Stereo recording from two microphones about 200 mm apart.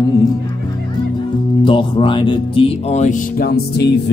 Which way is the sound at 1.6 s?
25° left (ahead or behind).